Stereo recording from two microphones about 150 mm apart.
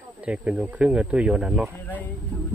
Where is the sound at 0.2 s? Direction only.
10° right (ahead or behind).